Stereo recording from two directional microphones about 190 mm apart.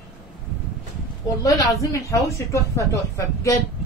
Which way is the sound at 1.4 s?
15° left (ahead or behind).